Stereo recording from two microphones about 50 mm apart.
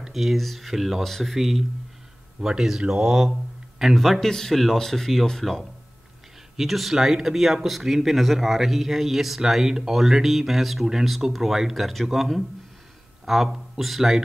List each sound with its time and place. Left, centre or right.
0.0 s speech: centre